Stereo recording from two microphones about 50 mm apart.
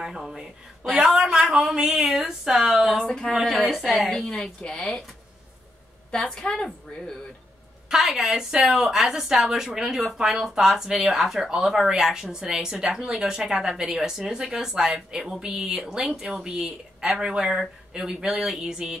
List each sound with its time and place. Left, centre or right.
0.0 s a woman's voice: centre
4.1 s a woman's voice: centre
6.1 s a woman's voice: centre
7.9 s speech: centre